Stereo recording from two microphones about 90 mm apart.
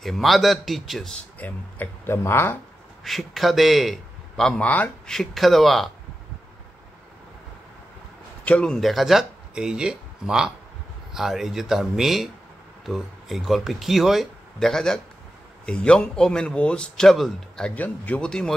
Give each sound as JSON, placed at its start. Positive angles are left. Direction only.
{"t": 0.0, "sound": "speech", "side_deg": 0}
{"t": 1.4, "sound": "speech", "side_deg": 20}
{"t": 3.0, "sound": "a man's voice", "side_deg": 0}
{"t": 5.0, "sound": "speech", "side_deg": 5}
{"t": 8.5, "sound": "a man's voice", "side_deg": 10}
{"t": 17.7, "sound": "speech", "side_deg": 20}